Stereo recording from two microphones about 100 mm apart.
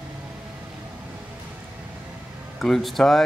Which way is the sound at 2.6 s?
Centre (ahead or behind).